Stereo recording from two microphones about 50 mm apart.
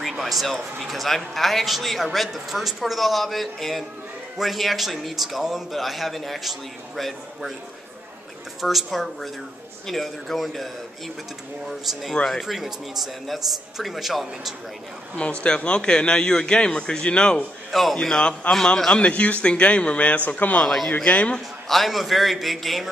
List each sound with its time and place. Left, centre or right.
0.2 s speech: centre
8.5 s speech: centre
11.8 s speech: centre
15.4 s speech: left
17.6 s speech: centre
18.0 s a man's voice: centre; by 20.6 s left
20.6 s a man's voice: centre
21.0 s speech: centre
21.6 s speech: centre